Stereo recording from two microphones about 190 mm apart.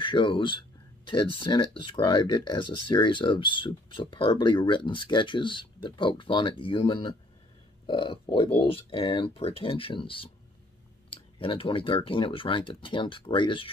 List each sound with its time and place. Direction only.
0.0 s speech: 25° left (ahead or behind)